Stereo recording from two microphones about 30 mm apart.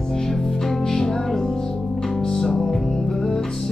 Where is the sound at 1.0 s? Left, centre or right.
Centre.